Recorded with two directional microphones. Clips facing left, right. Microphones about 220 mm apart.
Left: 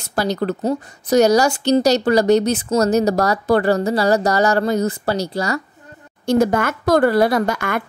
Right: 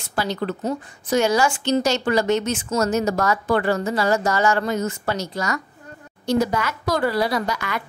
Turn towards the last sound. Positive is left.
turn(degrees=50)  # may be behind; listen again after turning